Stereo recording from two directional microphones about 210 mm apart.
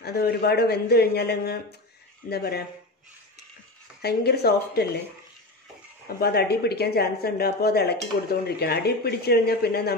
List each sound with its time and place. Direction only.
0.0 s speech: 50° left (ahead or behind)
4.0 s speech: 50° left (ahead or behind)
6.0 s speech: 50° left (ahead or behind)